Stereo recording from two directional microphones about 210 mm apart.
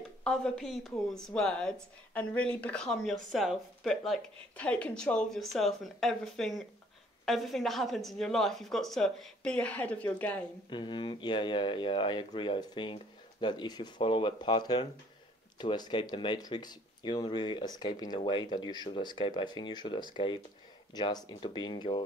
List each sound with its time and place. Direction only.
0.2 s speech: 5° left (ahead or behind)
10.7 s speech: 20° left (ahead or behind)